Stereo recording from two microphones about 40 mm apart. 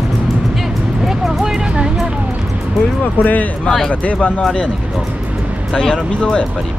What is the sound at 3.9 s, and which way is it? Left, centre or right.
Speech, left.